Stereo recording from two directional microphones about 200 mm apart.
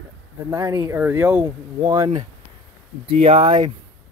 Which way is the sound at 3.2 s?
25° right (ahead or behind).